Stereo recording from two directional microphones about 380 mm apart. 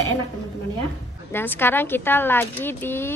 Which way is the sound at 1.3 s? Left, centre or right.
Centre.